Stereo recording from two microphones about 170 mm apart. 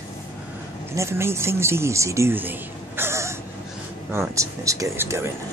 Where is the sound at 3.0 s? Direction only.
15° right (ahead or behind).